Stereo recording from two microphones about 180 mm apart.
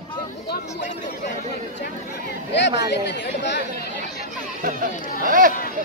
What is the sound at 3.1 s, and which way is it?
Speech, 75° left (ahead or behind).